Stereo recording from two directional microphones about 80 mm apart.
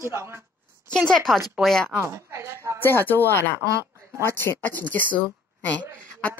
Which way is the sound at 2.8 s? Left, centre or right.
Left.